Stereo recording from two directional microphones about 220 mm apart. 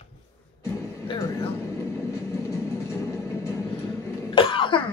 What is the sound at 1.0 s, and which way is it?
Vehicle, 20° left (ahead or behind).